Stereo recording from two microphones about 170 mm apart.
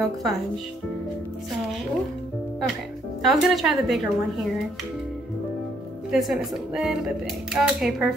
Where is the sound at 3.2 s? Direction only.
Centre (ahead or behind).